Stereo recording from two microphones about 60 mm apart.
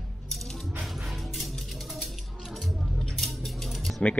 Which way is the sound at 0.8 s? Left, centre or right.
Centre.